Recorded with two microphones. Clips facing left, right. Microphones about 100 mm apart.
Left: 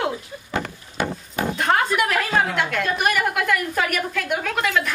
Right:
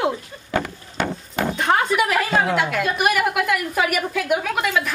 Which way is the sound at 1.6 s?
Centre (ahead or behind).